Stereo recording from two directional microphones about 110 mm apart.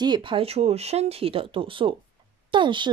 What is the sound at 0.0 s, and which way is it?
Speech, 45° right (ahead or behind).